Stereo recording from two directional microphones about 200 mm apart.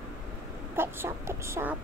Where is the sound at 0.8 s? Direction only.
10° right (ahead or behind).